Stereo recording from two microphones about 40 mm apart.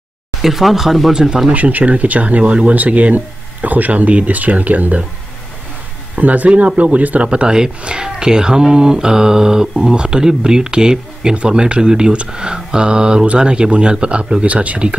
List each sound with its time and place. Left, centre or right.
0.4 s speech: centre
1.5 s speech: right
6.1 s speech: right
7.2 s speech: right